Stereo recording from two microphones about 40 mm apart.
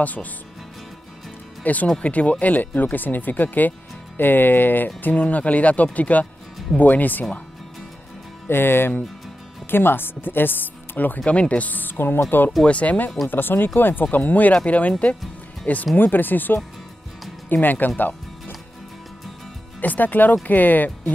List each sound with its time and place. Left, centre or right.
0.0 s speech: left
1.6 s speech: left
4.2 s speech: left
5.0 s speech: left
8.5 s speech: left
11.2 s speech: left
12.6 s speech: left
13.3 s speech: left
14.1 s speech: left
14.5 s speech: left
16.0 s speech: left
19.8 s speech: left